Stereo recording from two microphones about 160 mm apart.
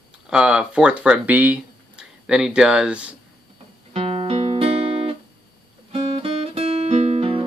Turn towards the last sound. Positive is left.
turn(degrees=-40)  # may be behind; listen again after turning